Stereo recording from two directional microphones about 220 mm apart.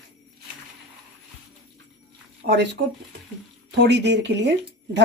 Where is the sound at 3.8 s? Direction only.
50° right (ahead or behind).